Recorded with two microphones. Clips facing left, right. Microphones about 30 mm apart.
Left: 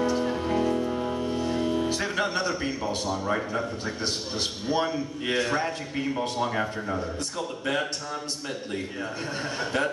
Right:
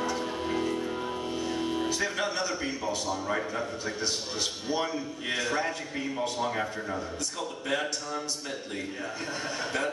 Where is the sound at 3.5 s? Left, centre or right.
Left.